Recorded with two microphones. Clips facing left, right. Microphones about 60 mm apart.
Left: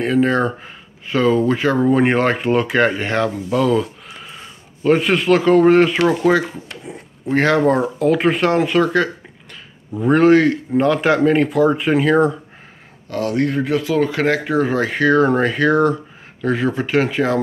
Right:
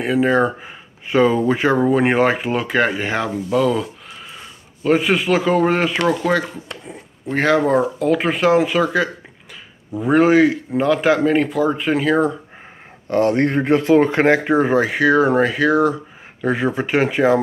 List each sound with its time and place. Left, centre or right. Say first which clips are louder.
0.0 s speech: even; centre
1.9 s speech: left 2 dB; centre
13.1 s speech: right 3 dB; right; by 17.4 s centre